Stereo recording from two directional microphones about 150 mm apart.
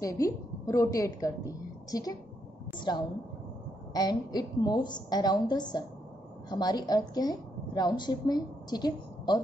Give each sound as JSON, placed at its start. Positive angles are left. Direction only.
{"t": 0.0, "sound": "a woman's voice", "side_deg": 20}